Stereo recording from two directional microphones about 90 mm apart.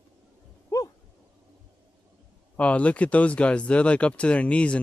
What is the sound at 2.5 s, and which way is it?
Speech, 15° left (ahead or behind).